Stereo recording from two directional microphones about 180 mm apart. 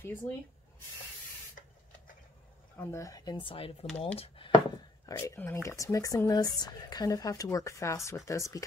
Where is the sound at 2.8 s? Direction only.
15° left (ahead or behind); by 4.5 s 30° left (ahead or behind).